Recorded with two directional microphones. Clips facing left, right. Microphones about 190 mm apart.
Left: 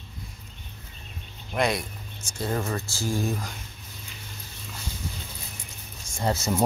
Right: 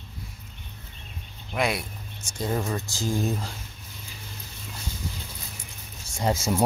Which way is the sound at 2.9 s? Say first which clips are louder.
Right 2 dB; 15° right (ahead or behind).